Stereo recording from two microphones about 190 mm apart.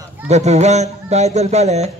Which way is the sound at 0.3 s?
35° right (ahead or behind).